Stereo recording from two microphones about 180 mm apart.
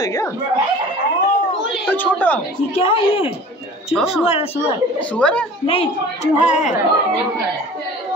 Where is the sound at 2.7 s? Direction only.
30° left (ahead or behind).